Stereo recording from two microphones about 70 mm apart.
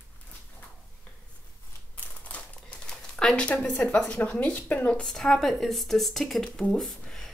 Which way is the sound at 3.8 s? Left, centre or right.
Centre.